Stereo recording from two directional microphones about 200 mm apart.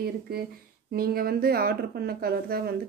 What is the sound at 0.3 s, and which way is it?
Speech, 50° right (ahead or behind).